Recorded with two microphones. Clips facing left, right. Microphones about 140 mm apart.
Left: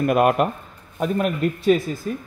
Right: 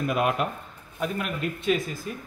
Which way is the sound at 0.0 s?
55° left (ahead or behind).